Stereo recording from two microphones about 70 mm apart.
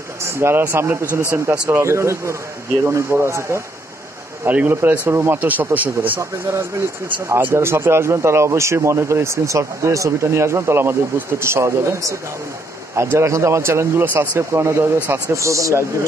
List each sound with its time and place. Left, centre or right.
0.2 s speech: right
4.5 s speech: right
6.5 s a man's voice: right
15.3 s speech: right